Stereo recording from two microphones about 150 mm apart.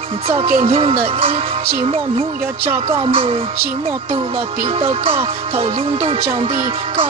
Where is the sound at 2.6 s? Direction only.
15° right (ahead or behind).